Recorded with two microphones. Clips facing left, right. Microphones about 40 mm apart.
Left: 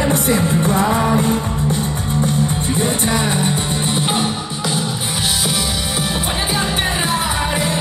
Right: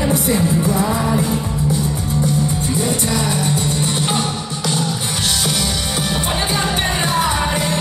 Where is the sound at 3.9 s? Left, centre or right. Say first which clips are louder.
Left 1 dB; centre.